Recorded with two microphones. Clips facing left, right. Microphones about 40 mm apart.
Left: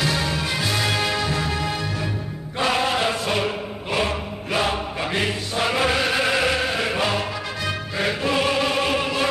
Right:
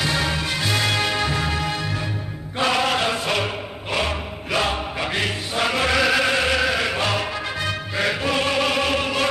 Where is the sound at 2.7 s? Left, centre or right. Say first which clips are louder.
Right 1 dB; right.